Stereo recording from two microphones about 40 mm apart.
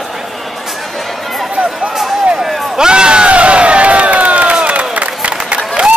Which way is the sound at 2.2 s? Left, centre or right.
Centre.